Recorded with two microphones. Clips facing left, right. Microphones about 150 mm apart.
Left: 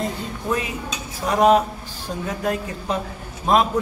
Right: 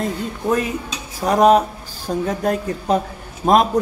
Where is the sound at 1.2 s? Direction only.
40° right (ahead or behind).